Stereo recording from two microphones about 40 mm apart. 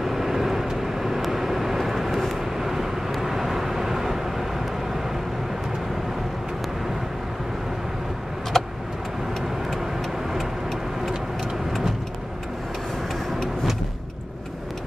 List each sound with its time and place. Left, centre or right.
0.0 s vehicle: centre
8.5 s vehicle: centre